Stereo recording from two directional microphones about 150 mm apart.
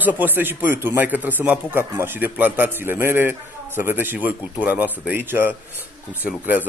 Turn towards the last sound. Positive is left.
turn(degrees=-10)  # may be behind; listen again after turning